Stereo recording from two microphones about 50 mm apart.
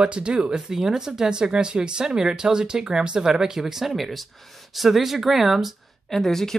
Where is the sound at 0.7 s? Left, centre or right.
Centre.